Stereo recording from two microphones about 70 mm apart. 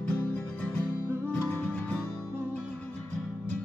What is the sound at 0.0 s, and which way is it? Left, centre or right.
Music, left.